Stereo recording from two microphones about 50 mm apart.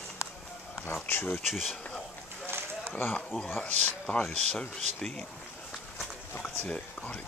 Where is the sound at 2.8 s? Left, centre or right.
Left.